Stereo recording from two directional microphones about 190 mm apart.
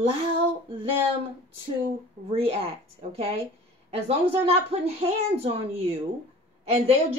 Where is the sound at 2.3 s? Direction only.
30° right (ahead or behind).